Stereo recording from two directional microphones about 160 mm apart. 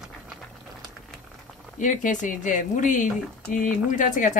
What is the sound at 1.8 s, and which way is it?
Speech, 50° left (ahead or behind).